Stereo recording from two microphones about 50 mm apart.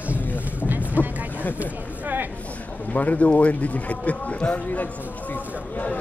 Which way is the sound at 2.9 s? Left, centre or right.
Left.